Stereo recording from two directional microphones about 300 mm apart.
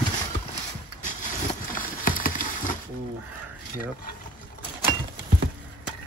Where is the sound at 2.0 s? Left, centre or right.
Left.